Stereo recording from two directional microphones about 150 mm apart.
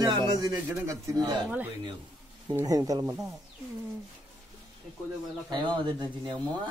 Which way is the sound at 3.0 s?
15° right (ahead or behind).